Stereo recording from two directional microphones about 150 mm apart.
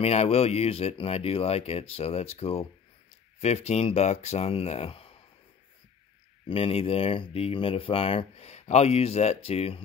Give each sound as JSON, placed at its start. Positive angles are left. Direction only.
{"t": 0.0, "sound": "speech", "side_deg": 45}
{"t": 6.5, "sound": "speech", "side_deg": 40}